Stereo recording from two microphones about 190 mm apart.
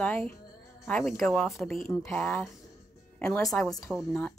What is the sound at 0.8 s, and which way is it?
A woman's voice, 5° left (ahead or behind).